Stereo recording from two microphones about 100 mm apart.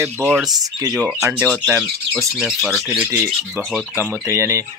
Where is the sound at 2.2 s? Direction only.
Centre (ahead or behind).